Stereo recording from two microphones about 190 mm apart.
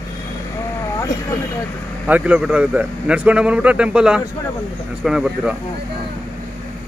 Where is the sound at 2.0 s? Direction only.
5° right (ahead or behind).